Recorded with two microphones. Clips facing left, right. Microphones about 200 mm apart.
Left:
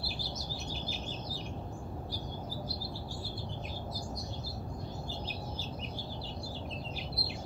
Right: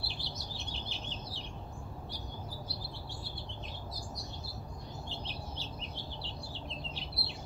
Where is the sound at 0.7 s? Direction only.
30° right (ahead or behind).